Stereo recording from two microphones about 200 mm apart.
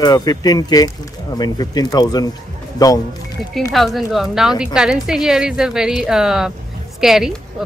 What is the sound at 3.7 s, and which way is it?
A woman's voice, centre (ahead or behind).